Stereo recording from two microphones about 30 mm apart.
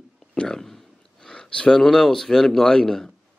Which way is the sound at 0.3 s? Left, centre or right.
Left.